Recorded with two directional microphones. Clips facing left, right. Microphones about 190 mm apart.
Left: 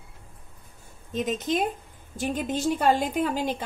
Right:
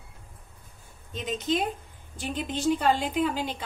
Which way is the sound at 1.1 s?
45° left (ahead or behind).